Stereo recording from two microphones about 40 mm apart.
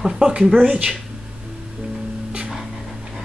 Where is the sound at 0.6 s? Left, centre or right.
Right.